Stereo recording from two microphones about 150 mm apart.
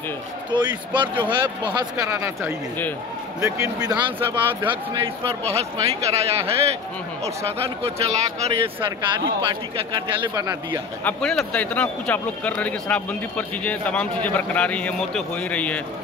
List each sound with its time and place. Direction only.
0.5 s a man's voice: 30° right (ahead or behind)
1.8 s speech: 20° right (ahead or behind)
4.4 s speech: 10° right (ahead or behind)
4.9 s speech: 40° right (ahead or behind)
7.6 s speech: 45° right (ahead or behind)
9.5 s a man's voice: 30° right (ahead or behind)
11.1 s speech: 5° left (ahead or behind)